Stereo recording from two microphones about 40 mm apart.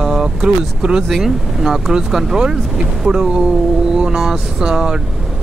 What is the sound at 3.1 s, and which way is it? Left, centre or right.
Speech, centre.